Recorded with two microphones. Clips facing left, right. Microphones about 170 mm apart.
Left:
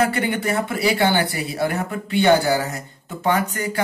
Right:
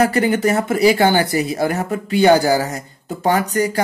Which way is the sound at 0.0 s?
40° right (ahead or behind).